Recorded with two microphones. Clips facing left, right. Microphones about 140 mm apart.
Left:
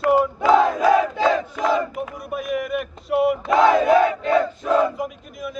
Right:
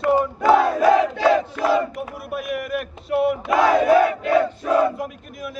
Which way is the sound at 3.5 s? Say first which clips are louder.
Even; 25° left (ahead or behind).